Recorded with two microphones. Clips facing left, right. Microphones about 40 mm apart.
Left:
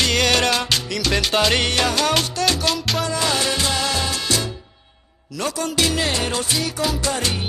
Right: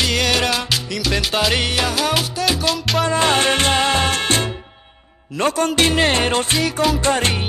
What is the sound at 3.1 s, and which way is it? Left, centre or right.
Music, right.